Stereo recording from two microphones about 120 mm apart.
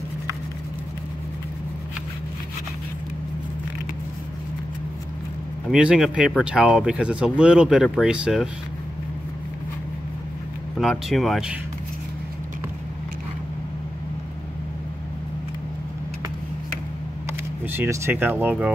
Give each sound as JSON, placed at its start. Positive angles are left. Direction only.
{"t": 5.7, "sound": "speech", "side_deg": -5}
{"t": 10.8, "sound": "speech", "side_deg": 0}
{"t": 17.3, "sound": "speech", "side_deg": -20}